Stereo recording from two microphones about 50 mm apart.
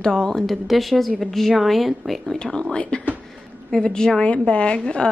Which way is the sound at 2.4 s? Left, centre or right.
Centre.